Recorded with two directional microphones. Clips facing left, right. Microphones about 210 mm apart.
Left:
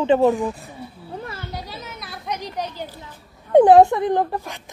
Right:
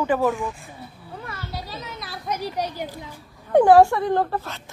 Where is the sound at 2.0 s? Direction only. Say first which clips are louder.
Right 2 dB; 5° right (ahead or behind).